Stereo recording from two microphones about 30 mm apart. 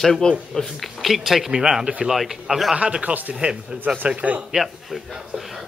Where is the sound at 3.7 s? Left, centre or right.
Right.